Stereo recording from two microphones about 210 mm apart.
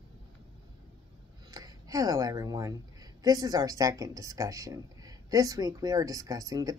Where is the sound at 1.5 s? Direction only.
15° right (ahead or behind).